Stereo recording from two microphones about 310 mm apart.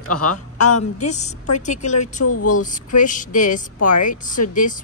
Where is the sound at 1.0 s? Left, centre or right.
Left.